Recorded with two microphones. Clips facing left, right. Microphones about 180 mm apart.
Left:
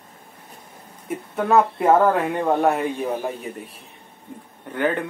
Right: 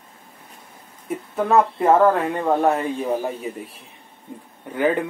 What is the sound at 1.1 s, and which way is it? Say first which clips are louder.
Speech: even; centre (ahead or behind).